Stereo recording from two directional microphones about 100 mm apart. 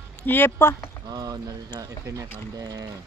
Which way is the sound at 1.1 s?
40° right (ahead or behind).